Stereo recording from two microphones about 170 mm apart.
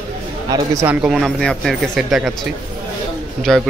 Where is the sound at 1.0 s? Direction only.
Centre (ahead or behind).